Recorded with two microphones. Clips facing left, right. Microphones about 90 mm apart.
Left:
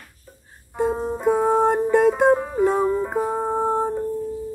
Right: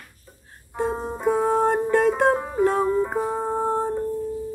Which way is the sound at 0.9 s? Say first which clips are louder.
Left 3 dB; centre (ahead or behind).